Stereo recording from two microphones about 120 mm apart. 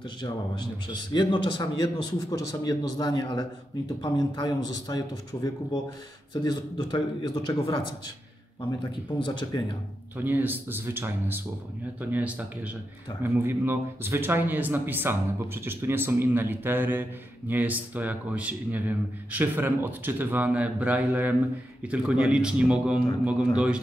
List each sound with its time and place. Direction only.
1.1 s a man's voice: 40° left (ahead or behind)
9.2 s a man's voice: 40° left (ahead or behind)
10.1 s speech: 15° right (ahead or behind)